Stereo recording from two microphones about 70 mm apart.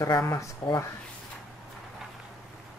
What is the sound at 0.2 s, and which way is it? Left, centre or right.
Speech, left.